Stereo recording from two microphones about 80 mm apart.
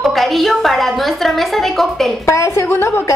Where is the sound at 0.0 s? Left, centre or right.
Centre.